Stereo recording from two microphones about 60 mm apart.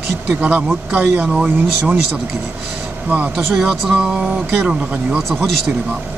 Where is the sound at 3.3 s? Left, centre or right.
Centre.